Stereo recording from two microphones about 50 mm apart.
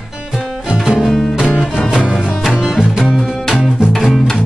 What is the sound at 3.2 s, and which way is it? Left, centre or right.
Music, centre.